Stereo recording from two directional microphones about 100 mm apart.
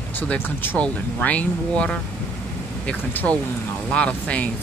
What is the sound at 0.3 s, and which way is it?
Speech, 10° left (ahead or behind).